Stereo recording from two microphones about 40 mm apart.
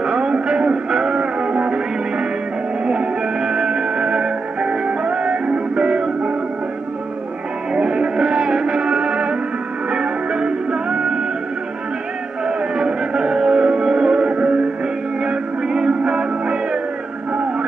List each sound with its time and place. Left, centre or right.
0.0 s music: right
7.7 s music: right
12.4 s music: right